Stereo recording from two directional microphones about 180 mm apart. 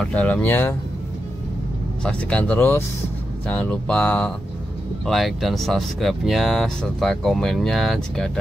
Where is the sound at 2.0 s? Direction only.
5° left (ahead or behind).